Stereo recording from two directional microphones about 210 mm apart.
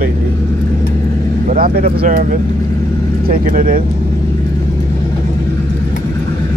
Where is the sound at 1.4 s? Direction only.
45° right (ahead or behind).